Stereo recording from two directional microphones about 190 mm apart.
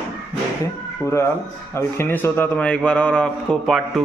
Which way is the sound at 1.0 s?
15° left (ahead or behind).